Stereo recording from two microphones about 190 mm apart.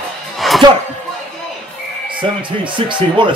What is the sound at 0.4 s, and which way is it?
Music, centre (ahead or behind).